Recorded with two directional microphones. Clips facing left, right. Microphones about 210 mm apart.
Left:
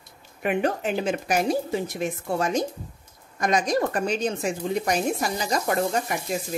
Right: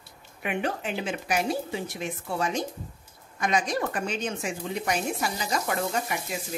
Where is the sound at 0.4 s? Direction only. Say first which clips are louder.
Left 5 dB; 45° left (ahead or behind).